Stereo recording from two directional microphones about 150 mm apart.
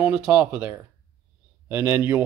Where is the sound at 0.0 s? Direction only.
5° right (ahead or behind).